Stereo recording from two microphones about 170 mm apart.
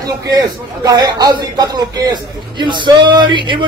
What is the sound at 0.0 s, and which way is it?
Speech, 20° right (ahead or behind).